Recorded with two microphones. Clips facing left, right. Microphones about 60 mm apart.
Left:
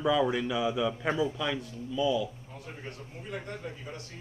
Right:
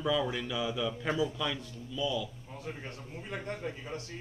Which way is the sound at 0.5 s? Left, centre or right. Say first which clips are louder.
Left 4 dB; centre.